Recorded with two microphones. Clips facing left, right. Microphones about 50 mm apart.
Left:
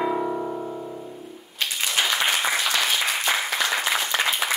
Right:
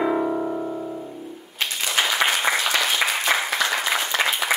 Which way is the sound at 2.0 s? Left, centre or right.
Centre.